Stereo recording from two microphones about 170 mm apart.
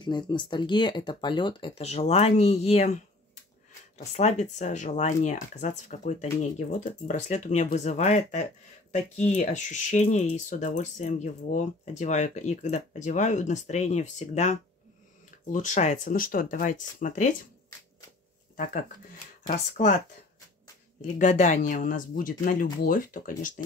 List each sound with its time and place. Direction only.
0.0 s speech: 25° left (ahead or behind)
4.1 s speech: 40° left (ahead or behind)
18.6 s speech: 50° left (ahead or behind)
21.2 s speech: 45° left (ahead or behind)